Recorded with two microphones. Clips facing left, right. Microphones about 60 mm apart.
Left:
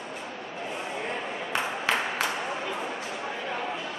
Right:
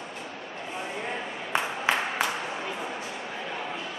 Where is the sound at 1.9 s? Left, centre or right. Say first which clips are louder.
Right 1 dB; centre.